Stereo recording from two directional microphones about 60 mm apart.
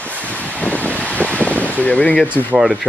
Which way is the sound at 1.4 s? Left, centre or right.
Left.